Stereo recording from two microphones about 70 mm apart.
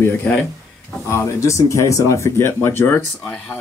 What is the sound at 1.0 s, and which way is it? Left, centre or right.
Speech, left.